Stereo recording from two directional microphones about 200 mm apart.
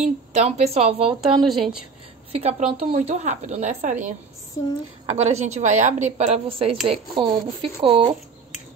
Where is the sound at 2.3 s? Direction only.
30° right (ahead or behind).